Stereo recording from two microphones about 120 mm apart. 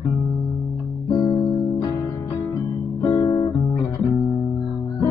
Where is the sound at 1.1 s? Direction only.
30° left (ahead or behind).